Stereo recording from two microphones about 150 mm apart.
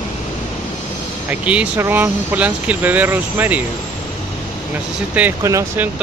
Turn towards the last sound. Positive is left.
turn(degrees=-15)  # may be behind; listen again after turning